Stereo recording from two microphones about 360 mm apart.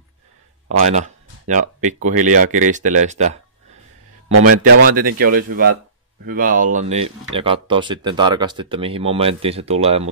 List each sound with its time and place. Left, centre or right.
0.7 s speech: centre
4.8 s speech: right